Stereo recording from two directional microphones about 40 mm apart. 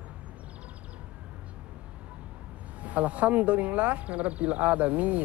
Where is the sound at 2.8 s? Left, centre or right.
Right.